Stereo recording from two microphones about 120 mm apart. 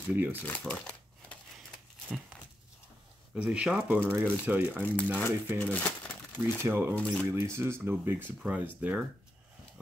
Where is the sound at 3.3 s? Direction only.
10° right (ahead or behind).